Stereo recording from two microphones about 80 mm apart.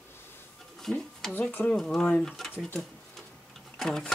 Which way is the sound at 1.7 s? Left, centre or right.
Centre.